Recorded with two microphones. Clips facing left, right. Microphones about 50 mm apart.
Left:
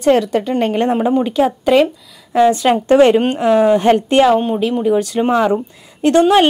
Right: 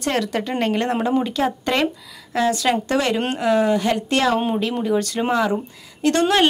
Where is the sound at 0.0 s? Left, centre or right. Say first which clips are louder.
Left 9 dB; centre.